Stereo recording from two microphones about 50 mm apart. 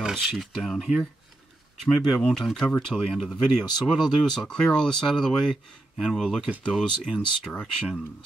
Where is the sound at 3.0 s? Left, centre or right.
Centre.